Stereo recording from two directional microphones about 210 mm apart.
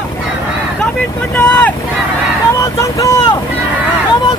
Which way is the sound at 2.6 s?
15° left (ahead or behind).